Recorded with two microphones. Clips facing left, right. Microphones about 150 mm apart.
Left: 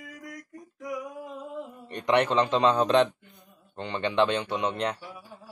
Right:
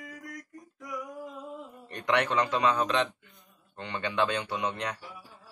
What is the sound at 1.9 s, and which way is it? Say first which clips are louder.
A man's voice: left 4 dB; 20° left (ahead or behind).